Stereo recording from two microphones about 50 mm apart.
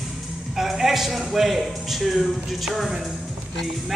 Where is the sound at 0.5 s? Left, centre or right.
Centre.